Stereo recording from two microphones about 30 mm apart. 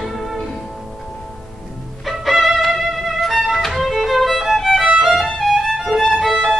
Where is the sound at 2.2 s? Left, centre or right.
Centre.